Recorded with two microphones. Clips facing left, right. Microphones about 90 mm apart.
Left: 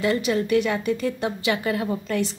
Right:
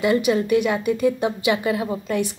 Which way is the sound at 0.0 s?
10° right (ahead or behind).